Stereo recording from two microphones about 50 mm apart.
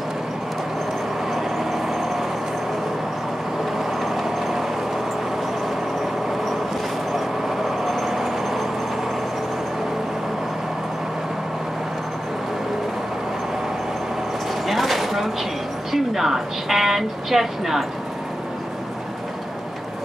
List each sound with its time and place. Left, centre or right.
1.3 s vehicle: centre
4.0 s vehicle: centre
7.2 s vehicle: centre
14.7 s a sound: centre
15.9 s speech: centre